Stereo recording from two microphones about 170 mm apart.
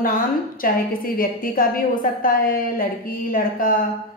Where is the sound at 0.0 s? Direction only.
55° left (ahead or behind).